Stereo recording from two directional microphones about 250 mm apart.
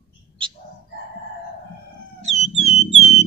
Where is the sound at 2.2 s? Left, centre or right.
Right.